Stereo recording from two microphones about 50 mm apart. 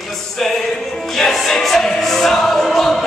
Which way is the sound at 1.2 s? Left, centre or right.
Centre.